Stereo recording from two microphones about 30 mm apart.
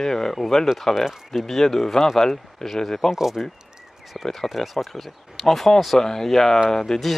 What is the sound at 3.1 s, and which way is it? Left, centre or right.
Speech, centre.